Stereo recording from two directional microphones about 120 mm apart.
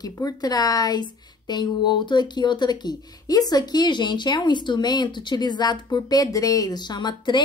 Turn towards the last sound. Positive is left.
turn(degrees=40)  # may be behind; listen again after turning